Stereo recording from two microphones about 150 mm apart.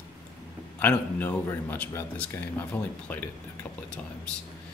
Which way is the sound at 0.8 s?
10° left (ahead or behind).